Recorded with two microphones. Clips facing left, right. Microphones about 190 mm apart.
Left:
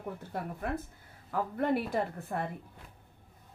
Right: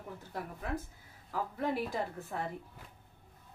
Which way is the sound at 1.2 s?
60° left (ahead or behind).